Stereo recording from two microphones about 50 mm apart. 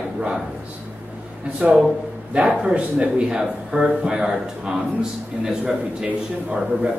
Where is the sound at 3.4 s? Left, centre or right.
Centre.